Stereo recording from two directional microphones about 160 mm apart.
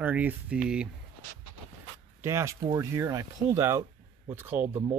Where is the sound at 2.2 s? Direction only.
20° right (ahead or behind).